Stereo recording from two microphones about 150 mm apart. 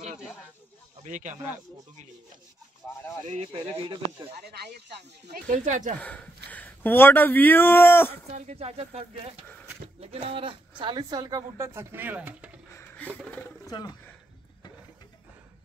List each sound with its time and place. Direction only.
1.0 s speech: 55° right (ahead or behind)
3.3 s speech: 45° right (ahead or behind)
4.5 s speech: 90° right
5.5 s speech: 55° right (ahead or behind)
5.9 s speech: 10° left (ahead or behind)
8.3 s speech: 50° right (ahead or behind); by 12.4 s 10° right (ahead or behind)
12.7 s a sound: 10° left (ahead or behind)
13.7 s speech: 25° left (ahead or behind)